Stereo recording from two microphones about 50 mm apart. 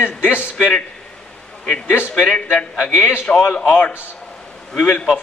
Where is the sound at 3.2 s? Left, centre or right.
Centre.